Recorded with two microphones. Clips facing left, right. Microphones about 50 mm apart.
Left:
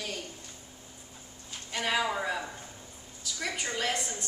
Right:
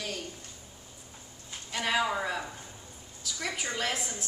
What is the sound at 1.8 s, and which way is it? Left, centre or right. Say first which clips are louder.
A woman's voice: right 1 dB; centre.